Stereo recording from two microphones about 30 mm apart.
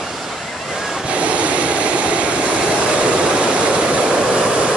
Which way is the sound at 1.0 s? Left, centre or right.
Right.